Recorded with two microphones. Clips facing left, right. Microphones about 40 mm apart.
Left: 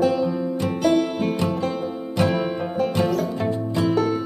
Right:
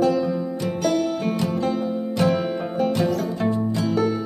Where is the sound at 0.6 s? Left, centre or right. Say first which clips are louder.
Left 3 dB; left.